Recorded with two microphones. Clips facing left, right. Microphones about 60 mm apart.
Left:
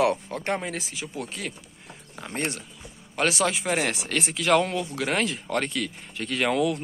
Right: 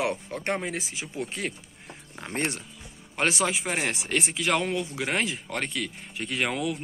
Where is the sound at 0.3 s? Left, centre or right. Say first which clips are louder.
Left 1 dB; centre.